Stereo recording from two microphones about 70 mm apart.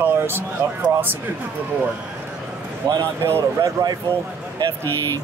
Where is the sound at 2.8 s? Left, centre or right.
Right.